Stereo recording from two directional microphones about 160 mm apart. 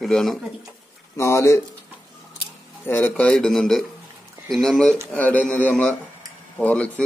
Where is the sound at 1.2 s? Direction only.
15° left (ahead or behind).